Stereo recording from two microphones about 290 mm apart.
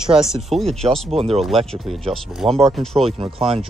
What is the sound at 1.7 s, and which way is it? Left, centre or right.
Speech, centre.